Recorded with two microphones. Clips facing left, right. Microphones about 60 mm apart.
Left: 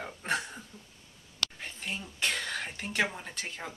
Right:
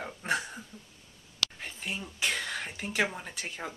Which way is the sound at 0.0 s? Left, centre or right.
Centre.